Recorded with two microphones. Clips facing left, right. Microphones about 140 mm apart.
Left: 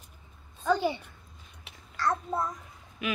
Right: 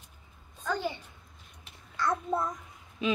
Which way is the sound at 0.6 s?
15° left (ahead or behind).